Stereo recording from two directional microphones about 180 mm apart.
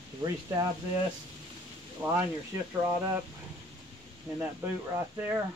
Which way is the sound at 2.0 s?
5° right (ahead or behind).